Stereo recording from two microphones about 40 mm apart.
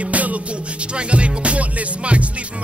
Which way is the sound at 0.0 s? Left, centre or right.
Right.